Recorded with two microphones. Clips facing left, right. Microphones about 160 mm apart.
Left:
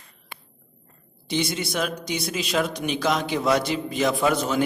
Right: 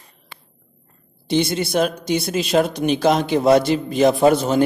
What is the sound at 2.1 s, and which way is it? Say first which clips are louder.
Speech: right 8 dB; 50° right (ahead or behind).